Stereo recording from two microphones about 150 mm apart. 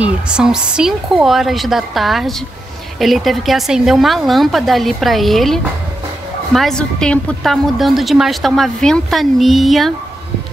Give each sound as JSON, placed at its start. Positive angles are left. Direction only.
{"t": 0.0, "sound": "a woman's voice", "side_deg": -5}